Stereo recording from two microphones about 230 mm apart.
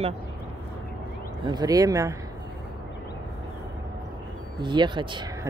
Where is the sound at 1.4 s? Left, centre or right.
Centre.